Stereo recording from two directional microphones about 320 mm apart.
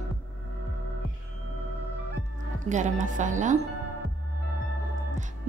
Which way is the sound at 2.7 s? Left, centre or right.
Right.